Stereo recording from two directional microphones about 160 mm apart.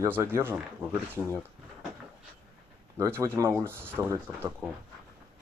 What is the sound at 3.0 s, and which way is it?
Speech, 15° right (ahead or behind).